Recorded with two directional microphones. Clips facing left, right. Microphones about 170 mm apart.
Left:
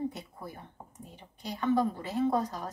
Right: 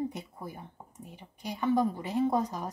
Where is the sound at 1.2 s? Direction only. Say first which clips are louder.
Right 1 dB; 15° right (ahead or behind).